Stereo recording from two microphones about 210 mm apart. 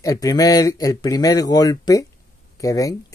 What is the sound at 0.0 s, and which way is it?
Speech, 15° left (ahead or behind).